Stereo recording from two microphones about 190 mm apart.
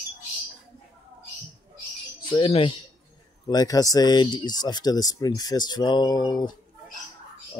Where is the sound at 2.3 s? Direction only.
30° left (ahead or behind).